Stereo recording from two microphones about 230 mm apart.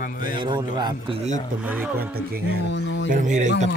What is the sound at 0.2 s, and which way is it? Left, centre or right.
Speech, centre.